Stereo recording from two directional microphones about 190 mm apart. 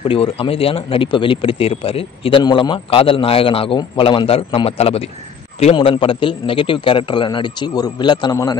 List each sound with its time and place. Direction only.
0.1 s a man's voice: 30° left (ahead or behind)